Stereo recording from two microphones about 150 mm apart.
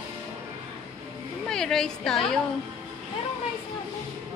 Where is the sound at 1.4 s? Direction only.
5° left (ahead or behind).